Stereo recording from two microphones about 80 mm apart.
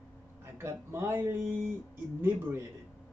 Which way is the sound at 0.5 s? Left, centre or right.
Right.